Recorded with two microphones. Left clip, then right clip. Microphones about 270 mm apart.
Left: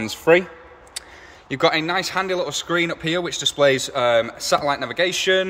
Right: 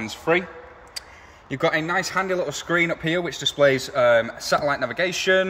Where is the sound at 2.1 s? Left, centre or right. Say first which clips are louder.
Left 1 dB; centre.